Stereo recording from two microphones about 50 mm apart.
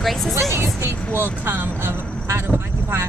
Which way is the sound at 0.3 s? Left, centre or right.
Right.